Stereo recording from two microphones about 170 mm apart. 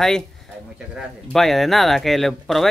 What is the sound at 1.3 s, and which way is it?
Speech, centre (ahead or behind).